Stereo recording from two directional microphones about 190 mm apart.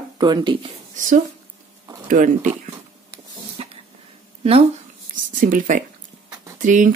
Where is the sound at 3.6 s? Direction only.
35° right (ahead or behind).